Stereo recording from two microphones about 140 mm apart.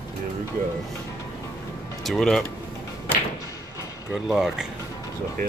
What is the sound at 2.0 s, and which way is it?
Speech, centre (ahead or behind).